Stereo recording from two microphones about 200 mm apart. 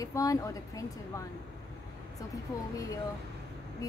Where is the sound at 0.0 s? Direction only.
15° left (ahead or behind).